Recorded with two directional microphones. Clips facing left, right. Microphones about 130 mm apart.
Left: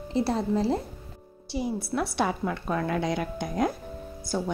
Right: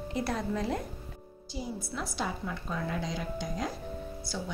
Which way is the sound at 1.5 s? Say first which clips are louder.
Left 8 dB; 70° left (ahead or behind).